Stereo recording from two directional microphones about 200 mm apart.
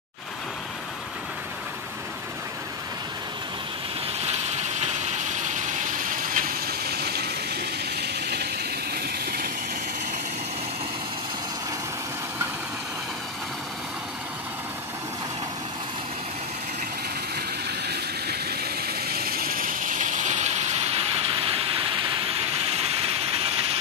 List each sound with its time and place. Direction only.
4.2 s vehicle: 35° right (ahead or behind); by 9.5 s 50° right (ahead or behind)
17.6 s vehicle: 55° right (ahead or behind); by 21.8 s 25° right (ahead or behind)
22.4 s train: 30° right (ahead or behind)